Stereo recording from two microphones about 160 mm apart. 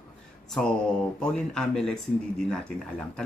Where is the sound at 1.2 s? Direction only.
5° left (ahead or behind).